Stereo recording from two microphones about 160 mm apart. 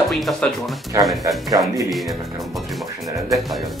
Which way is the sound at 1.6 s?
20° right (ahead or behind).